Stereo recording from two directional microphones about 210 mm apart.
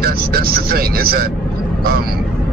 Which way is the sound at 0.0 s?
45° right (ahead or behind).